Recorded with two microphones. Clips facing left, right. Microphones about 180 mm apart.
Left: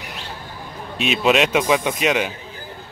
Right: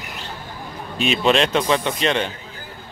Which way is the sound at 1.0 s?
5° left (ahead or behind).